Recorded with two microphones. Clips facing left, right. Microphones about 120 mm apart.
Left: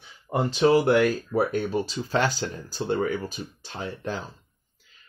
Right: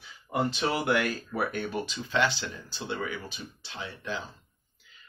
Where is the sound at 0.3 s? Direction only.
30° left (ahead or behind).